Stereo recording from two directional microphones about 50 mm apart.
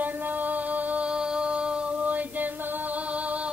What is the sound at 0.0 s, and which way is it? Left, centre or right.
Music, right.